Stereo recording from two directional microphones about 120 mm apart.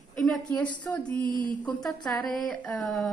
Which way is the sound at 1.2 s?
40° right (ahead or behind).